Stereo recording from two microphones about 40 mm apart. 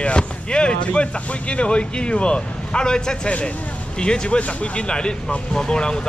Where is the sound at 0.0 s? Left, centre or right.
Left.